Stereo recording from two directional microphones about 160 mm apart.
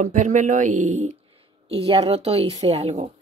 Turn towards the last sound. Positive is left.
turn(degrees=-40)  # may be behind; listen again after turning